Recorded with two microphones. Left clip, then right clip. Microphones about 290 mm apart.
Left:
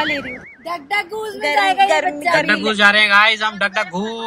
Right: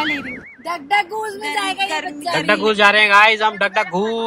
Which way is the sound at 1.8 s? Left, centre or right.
Left.